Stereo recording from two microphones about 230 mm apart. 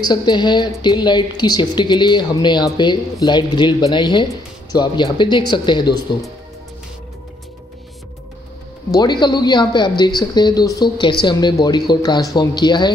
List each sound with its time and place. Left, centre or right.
0.0 s speech: centre
8.9 s speech: centre